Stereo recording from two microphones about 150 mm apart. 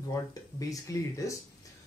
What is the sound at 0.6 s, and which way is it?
Speech, 20° left (ahead or behind).